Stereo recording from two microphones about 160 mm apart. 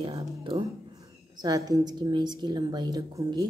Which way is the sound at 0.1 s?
30° right (ahead or behind).